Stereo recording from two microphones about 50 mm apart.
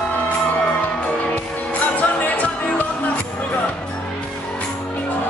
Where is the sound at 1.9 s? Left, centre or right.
Left.